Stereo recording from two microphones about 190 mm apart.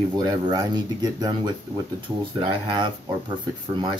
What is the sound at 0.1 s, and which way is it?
Speech, 20° right (ahead or behind).